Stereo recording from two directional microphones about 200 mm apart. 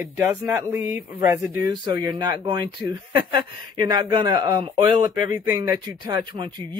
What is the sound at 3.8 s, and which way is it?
Speech, 20° right (ahead or behind).